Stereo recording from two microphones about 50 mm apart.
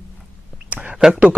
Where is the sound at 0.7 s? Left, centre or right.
Right.